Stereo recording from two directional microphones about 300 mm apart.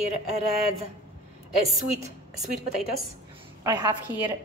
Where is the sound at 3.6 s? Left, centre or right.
Centre.